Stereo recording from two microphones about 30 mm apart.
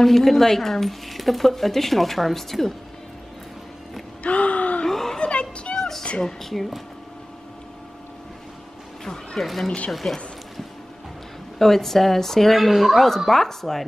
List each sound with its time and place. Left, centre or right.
0.0 s speech: centre
4.2 s gasp: left
4.8 s a sound: centre
5.3 s a sound: left
5.8 s cat: centre
6.5 s speech: centre
9.0 s a sound: centre
9.4 s speech: centre
10.0 s speech: left
11.5 s speech: centre
12.5 s speech: centre
13.3 s speech: centre